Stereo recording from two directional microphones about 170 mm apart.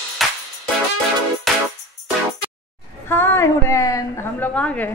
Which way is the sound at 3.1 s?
10° left (ahead or behind).